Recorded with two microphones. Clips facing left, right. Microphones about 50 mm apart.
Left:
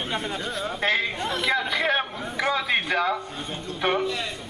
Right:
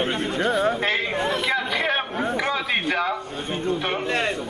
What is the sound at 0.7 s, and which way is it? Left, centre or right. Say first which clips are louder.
Speech: even; centre.